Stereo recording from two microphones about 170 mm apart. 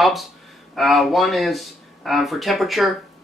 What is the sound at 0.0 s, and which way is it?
Speech, centre (ahead or behind).